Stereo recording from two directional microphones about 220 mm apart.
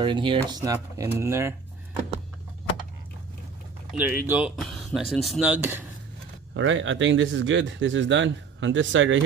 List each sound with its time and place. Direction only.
0.0 s speech: 20° right (ahead or behind)
4.0 s speech: 10° right (ahead or behind)
6.5 s speech: 60° right (ahead or behind)